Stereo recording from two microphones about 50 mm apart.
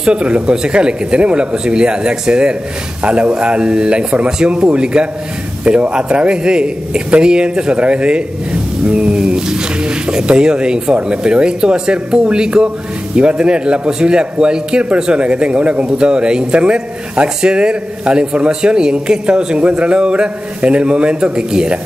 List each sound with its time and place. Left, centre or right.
0.0 s a man's voice: right